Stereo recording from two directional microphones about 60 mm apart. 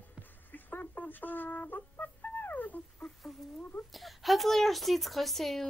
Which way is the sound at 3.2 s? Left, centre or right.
Centre.